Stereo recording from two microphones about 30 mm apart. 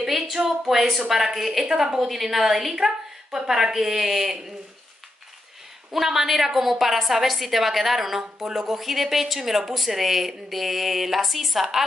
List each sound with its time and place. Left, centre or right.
0.0 s a sound: centre
0.5 s a woman's voice: centre
2.0 s a woman's voice: centre
3.3 s a woman's voice: centre
5.9 s a woman's voice: centre